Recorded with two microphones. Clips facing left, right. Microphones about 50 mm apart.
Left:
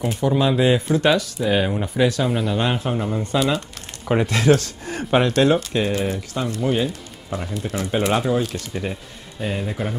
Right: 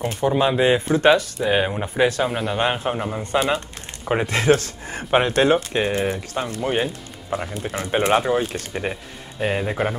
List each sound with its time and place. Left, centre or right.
0.2 s speech: right
2.5 s speech: right
3.3 s a man's voice: right